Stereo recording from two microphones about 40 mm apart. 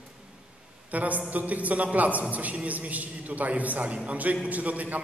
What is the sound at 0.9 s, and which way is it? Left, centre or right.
A woman's voice, right.